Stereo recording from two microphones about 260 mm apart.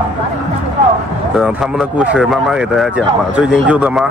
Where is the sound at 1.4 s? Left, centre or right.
Centre.